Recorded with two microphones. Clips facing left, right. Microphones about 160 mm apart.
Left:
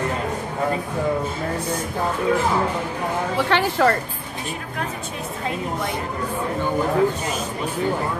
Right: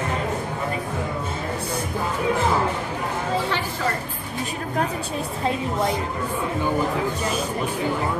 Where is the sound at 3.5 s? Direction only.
70° left (ahead or behind).